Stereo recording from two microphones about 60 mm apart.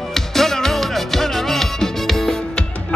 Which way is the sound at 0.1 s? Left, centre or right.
Centre.